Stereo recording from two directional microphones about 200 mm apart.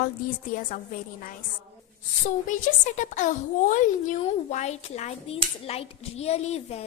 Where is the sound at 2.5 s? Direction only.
40° left (ahead or behind).